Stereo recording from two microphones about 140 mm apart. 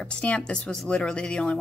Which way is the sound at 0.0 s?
10° left (ahead or behind).